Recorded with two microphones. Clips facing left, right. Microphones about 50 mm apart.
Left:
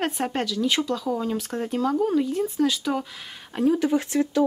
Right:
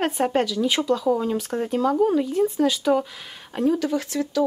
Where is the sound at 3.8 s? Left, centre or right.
Left.